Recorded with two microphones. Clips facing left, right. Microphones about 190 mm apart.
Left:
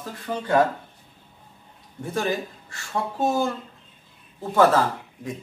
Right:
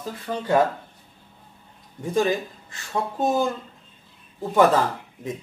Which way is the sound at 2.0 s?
15° right (ahead or behind).